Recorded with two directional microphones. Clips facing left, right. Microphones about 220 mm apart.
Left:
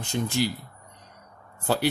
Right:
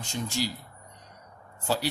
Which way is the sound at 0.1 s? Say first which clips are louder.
Left 5 dB; 60° left (ahead or behind).